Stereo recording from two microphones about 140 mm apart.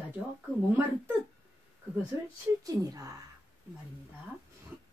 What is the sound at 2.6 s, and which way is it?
Speech, 25° right (ahead or behind).